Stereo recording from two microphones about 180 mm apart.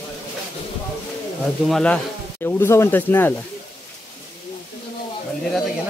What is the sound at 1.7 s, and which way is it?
Speech, 5° left (ahead or behind).